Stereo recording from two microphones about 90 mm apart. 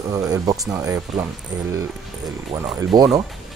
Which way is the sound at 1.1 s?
Centre (ahead or behind).